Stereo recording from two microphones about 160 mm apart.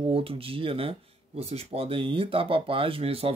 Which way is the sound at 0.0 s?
35° right (ahead or behind).